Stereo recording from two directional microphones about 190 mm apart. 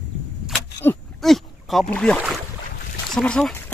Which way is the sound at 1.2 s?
Centre (ahead or behind).